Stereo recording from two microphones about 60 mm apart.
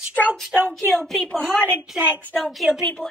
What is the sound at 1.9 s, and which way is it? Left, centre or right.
Speech, centre.